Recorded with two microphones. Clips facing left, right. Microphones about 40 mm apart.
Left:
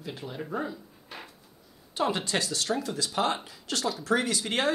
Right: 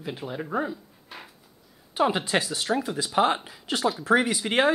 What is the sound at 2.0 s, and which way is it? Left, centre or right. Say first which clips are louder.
Speech: right 4 dB; centre.